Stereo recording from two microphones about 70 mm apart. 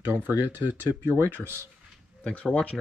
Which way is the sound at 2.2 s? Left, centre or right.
Centre.